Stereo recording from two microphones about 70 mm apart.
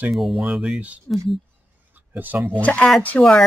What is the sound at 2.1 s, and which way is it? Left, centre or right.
Speech, right.